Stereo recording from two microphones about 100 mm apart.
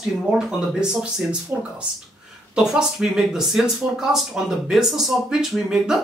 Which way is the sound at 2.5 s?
5° right (ahead or behind).